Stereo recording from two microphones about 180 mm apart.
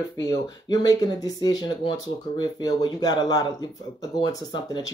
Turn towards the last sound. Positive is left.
turn(degrees=20)  # may be behind; listen again after turning